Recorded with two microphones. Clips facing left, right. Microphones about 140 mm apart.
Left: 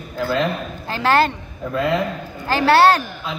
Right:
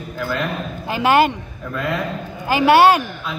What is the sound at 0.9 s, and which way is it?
Speech, 15° right (ahead or behind).